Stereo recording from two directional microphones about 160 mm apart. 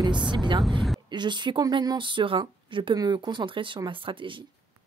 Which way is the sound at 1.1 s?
30° right (ahead or behind).